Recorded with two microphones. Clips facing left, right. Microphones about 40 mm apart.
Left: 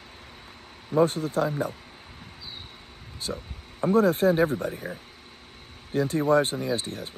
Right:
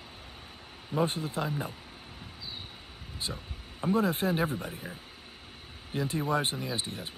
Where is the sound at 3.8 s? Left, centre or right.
Left.